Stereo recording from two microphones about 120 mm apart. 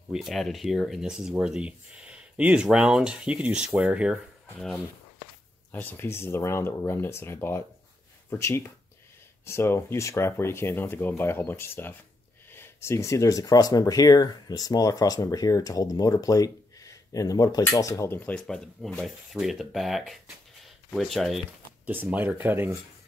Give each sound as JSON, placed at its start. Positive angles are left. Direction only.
{"t": 0.1, "sound": "speech", "side_deg": 0}
{"t": 5.7, "sound": "speech", "side_deg": 15}
{"t": 21.8, "sound": "speech", "side_deg": -15}